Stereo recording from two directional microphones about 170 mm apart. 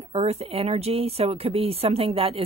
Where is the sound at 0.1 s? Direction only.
35° right (ahead or behind).